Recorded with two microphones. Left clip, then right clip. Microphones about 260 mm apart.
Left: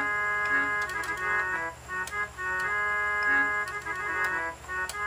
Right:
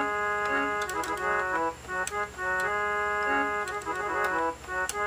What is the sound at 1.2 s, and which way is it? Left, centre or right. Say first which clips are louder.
Music: right 1 dB; centre.